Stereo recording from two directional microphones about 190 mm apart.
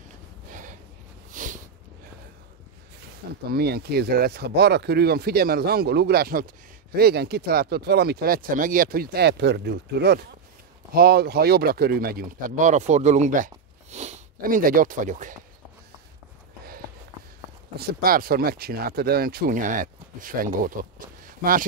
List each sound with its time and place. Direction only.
0.5 s gasp: 45° right (ahead or behind)
1.3 s a sound: 45° right (ahead or behind)
3.5 s speech: 55° right (ahead or behind)
17.7 s speech: 50° right (ahead or behind)